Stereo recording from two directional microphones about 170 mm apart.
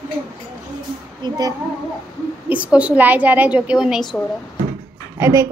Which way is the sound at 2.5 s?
10° right (ahead or behind).